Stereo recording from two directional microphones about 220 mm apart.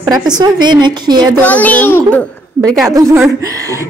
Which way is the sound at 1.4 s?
5° left (ahead or behind).